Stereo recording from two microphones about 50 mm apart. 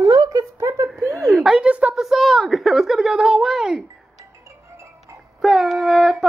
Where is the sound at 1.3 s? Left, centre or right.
Centre.